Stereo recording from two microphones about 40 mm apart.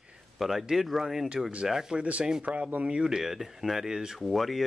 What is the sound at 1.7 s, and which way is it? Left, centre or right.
Speech, centre.